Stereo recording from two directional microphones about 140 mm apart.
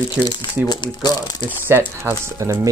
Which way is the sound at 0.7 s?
30° left (ahead or behind).